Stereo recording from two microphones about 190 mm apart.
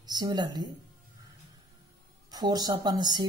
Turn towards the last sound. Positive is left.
turn(degrees=-20)  # may be behind; listen again after turning